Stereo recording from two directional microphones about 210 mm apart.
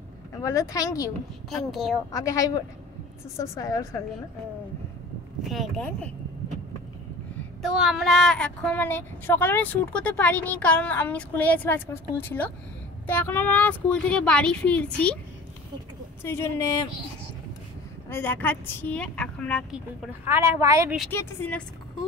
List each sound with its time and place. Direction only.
0.4 s speech: 15° left (ahead or behind)
1.5 s a woman's voice: centre (ahead or behind)
2.1 s speech: 15° left (ahead or behind)
5.4 s a woman's voice: centre (ahead or behind)
7.6 s a woman's voice: 5° right (ahead or behind)
16.2 s speech: 10° left (ahead or behind)
18.1 s a woman's voice: 10° left (ahead or behind); by 20.9 s 15° right (ahead or behind)
21.1 s speech: 10° left (ahead or behind)